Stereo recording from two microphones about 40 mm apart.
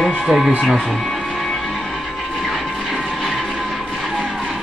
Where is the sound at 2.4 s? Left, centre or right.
Centre.